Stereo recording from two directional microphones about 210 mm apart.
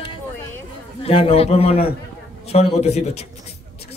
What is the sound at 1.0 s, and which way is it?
A man's voice, 30° left (ahead or behind).